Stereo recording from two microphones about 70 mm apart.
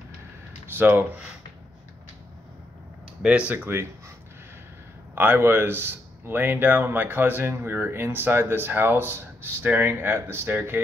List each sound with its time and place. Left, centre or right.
0.7 s speech: right
3.2 s speech: centre
3.5 s speech: right
5.1 s speech: right